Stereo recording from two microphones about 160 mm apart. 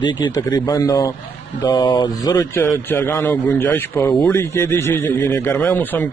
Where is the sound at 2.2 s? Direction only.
15° left (ahead or behind).